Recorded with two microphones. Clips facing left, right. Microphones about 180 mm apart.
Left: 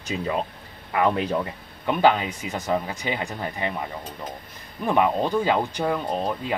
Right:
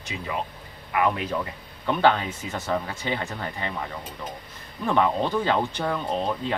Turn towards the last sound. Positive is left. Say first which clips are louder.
# even
turn(degrees=10)  # may be behind; listen again after turning